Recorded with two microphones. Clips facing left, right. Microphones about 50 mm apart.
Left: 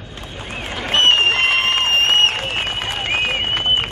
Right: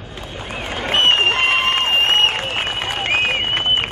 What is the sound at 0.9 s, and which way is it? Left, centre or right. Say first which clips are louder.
Applause: left 1 dB; centre.